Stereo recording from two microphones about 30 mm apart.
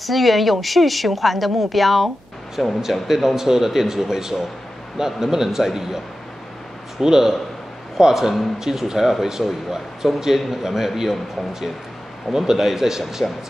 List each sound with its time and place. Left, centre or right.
0.0 s speech: centre
2.8 s a man's voice: centre
7.0 s a man's voice: centre
12.3 s a man's voice: centre